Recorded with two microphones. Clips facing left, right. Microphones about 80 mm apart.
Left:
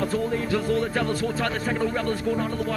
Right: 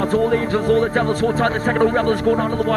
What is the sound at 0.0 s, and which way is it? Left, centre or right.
Speech, right.